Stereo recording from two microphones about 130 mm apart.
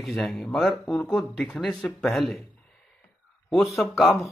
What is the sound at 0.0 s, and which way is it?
Speech, centre (ahead or behind).